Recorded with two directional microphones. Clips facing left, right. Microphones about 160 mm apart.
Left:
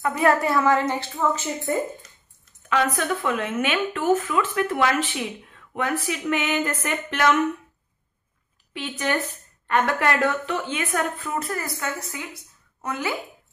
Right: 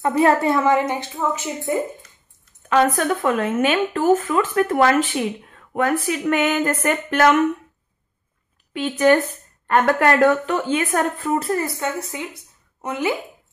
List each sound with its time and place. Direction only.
0.0 s a woman's voice: 30° right (ahead or behind)
2.7 s speech: 45° right (ahead or behind)
8.7 s a woman's voice: 45° right (ahead or behind); by 13.1 s 20° right (ahead or behind)